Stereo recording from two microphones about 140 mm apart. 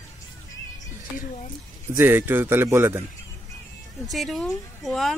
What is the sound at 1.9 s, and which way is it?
Speech, 15° right (ahead or behind).